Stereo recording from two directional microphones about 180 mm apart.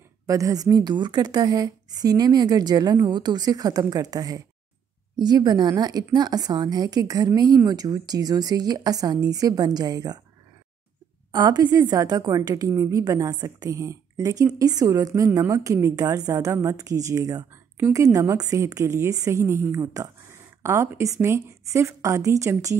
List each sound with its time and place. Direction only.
0.3 s speech: 20° right (ahead or behind)
11.3 s a woman's voice: 25° right (ahead or behind)